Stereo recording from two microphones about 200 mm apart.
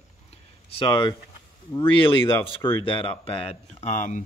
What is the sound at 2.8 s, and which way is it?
Speech, 25° left (ahead or behind).